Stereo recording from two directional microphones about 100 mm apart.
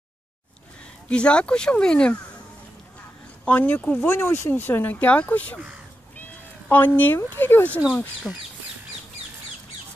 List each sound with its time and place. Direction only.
1.0 s speech: 10° left (ahead or behind)
3.4 s speech: 15° left (ahead or behind)
6.7 s speech: 20° left (ahead or behind)
8.3 s speech: 5° left (ahead or behind)